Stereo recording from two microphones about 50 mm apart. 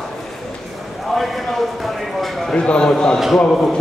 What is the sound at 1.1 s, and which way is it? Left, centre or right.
Clip-clop, centre.